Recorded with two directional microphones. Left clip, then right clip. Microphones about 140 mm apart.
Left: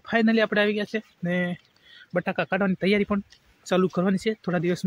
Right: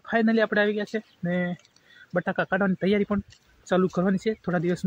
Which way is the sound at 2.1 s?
10° left (ahead or behind).